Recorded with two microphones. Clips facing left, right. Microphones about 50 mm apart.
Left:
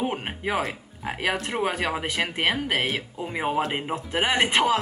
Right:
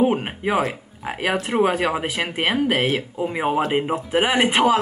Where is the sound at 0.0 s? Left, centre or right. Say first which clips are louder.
Right 8 dB; centre.